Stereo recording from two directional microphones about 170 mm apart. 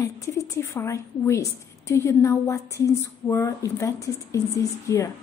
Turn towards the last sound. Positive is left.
turn(degrees=20)  # may be behind; listen again after turning